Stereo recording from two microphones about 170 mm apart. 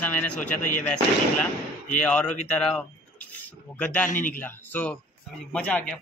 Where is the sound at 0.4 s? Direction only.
50° left (ahead or behind).